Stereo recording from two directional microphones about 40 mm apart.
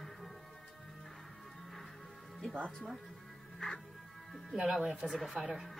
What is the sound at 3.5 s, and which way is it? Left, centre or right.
Music, centre.